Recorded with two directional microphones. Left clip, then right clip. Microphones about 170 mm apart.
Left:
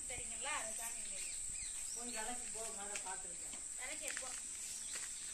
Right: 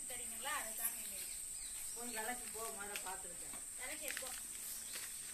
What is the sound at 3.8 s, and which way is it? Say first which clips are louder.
Snake: even; 25° left (ahead or behind).